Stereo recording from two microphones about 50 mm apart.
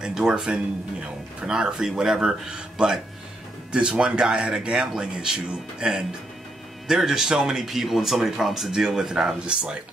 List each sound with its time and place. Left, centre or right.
0.0 s speech: centre